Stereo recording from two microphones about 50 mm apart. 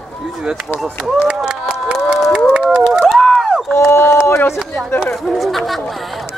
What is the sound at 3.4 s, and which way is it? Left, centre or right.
Run, centre.